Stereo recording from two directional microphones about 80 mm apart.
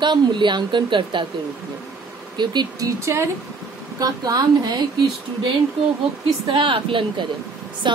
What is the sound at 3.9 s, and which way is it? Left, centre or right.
Speech, right.